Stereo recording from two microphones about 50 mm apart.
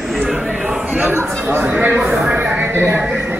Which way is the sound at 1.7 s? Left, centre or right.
Right.